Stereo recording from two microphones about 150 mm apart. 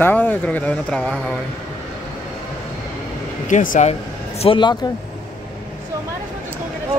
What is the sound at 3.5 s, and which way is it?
Speech, 60° left (ahead or behind).